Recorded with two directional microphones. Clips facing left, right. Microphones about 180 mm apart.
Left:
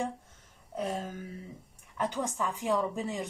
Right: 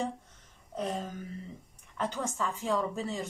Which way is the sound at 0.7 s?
10° left (ahead or behind).